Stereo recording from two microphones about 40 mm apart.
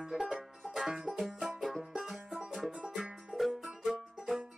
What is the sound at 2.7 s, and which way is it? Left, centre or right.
Music, right.